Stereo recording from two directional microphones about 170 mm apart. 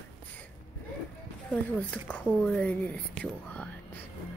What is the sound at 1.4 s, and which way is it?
Speech, 5° left (ahead or behind).